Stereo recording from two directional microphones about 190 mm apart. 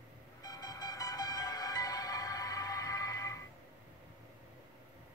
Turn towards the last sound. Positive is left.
turn(degrees=15)  # may be behind; listen again after turning